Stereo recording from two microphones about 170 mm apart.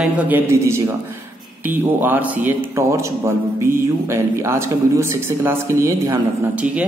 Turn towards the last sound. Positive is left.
turn(degrees=-15)  # may be behind; listen again after turning